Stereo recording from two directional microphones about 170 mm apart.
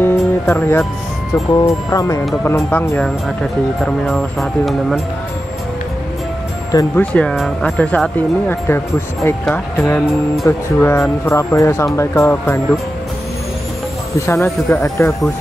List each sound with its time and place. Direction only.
0.0 s music: 10° left (ahead or behind)
1.3 s speech: 20° left (ahead or behind)
4.0 s speech: centre (ahead or behind)
7.0 s speech: 5° left (ahead or behind)
14.2 s speech: 15° left (ahead or behind)